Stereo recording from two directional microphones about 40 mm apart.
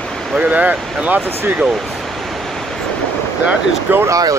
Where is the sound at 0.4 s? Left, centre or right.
Right.